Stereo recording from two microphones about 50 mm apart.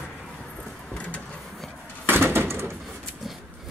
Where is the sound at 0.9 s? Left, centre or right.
Left.